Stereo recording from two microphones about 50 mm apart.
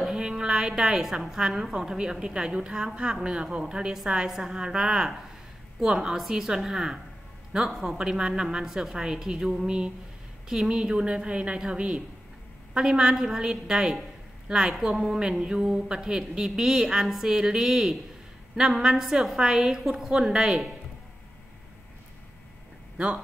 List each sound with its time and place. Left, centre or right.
0.0 s a sound: centre
0.3 s a woman's voice: centre
7.7 s a woman's voice: centre
8.0 s a woman's voice: centre
22.9 s speech: right